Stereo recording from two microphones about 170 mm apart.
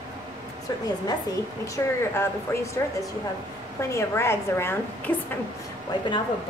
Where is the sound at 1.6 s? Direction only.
20° left (ahead or behind).